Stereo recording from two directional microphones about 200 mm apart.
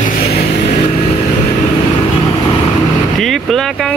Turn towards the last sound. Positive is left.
turn(degrees=0)  # may be behind; listen again after turning